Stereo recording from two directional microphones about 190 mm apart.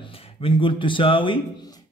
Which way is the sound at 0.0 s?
25° left (ahead or behind).